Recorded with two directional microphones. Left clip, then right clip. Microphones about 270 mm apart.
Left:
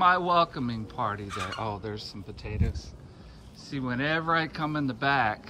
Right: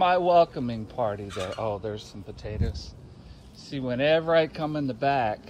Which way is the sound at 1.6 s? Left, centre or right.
Left.